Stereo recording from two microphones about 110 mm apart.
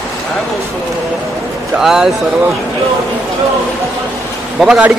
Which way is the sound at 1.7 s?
5° right (ahead or behind).